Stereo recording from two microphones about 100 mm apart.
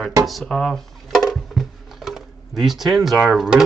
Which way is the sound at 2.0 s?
Centre (ahead or behind).